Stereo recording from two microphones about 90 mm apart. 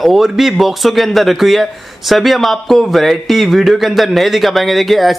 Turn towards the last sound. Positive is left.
turn(degrees=0)  # may be behind; listen again after turning